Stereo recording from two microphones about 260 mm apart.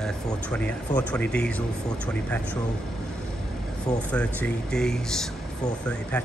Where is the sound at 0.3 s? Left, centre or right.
Centre.